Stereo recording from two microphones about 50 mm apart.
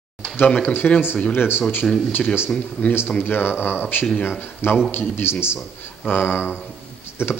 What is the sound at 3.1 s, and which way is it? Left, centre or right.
A man's voice, left.